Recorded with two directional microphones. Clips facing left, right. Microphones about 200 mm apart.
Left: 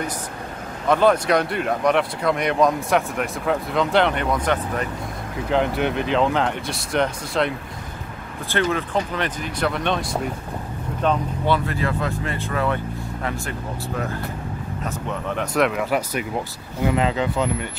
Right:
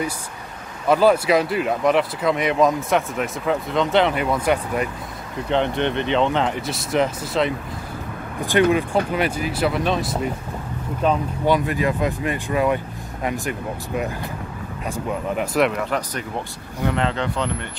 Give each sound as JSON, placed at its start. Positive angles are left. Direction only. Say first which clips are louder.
{"t": 0.8, "sound": "speech", "louder": "right 1 dB", "side_deg": -5}
{"t": 5.5, "sound": "speech", "louder": "even", "side_deg": 5}
{"t": 8.4, "sound": "speech", "louder": "right 5 dB", "side_deg": -15}